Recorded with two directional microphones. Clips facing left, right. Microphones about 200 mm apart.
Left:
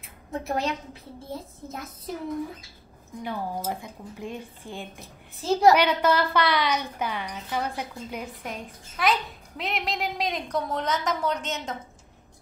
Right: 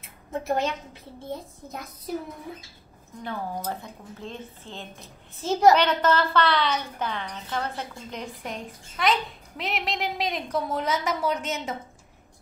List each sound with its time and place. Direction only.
0.0 s a sound: centre (ahead or behind)
1.3 s a woman's voice: centre (ahead or behind)
3.2 s a woman's voice: 10° left (ahead or behind)
5.4 s a woman's voice: centre (ahead or behind)